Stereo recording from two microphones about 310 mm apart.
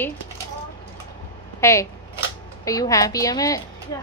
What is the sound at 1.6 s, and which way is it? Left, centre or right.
Speech, centre.